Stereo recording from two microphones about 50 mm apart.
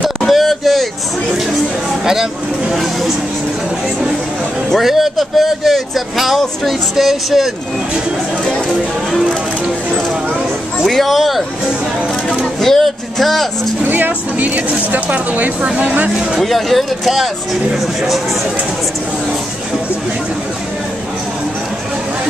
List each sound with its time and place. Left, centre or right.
0.3 s a sound: centre
2.7 s speech: centre
4.6 s speech: centre
10.9 s speech: centre
12.3 s a sound: centre
13.8 s speech: right
16.3 s speech: centre